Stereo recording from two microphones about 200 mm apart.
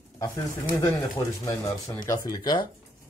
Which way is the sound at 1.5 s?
15° left (ahead or behind).